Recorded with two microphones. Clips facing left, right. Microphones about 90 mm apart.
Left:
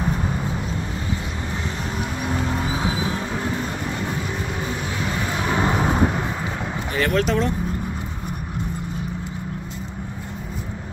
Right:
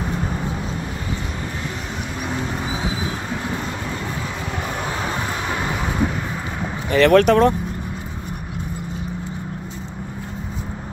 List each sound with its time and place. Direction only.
6.9 s speech: 75° right (ahead or behind); by 7.5 s 60° right (ahead or behind)